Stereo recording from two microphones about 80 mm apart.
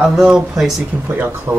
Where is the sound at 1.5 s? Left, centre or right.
Right.